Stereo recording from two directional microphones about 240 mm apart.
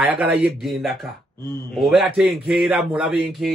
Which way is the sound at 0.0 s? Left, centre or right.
Centre.